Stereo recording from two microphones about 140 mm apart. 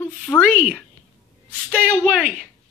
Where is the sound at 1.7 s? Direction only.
15° right (ahead or behind).